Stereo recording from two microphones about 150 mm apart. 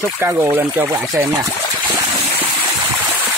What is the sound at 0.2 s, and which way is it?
Speech, 15° right (ahead or behind).